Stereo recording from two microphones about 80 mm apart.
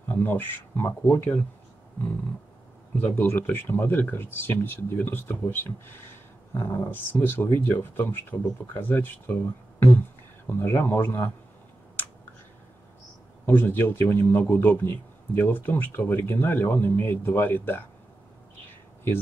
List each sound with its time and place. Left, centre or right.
0.1 s speech: left
3.2 s speech: left
13.5 s speech: left